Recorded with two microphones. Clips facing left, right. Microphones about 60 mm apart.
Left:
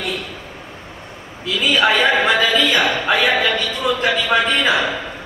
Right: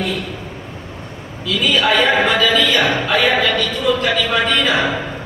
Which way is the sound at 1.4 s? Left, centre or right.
Left.